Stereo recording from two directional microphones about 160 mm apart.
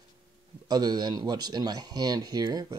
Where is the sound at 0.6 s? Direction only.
25° right (ahead or behind).